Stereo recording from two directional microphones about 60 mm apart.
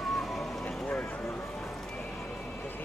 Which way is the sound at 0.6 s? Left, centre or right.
Left.